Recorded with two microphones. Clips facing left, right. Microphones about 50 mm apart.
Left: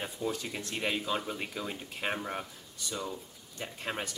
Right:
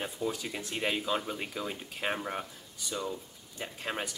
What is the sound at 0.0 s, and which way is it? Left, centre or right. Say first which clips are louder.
Speech: right 1 dB; centre.